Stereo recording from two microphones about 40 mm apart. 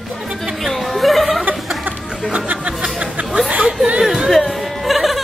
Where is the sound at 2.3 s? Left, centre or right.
Right.